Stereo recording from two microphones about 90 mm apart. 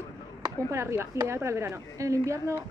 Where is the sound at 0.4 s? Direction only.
35° right (ahead or behind).